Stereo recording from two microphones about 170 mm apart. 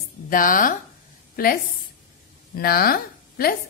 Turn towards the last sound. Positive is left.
turn(degrees=60)  # may be behind; listen again after turning